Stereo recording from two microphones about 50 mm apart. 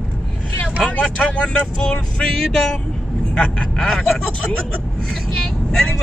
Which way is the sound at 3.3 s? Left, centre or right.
Centre.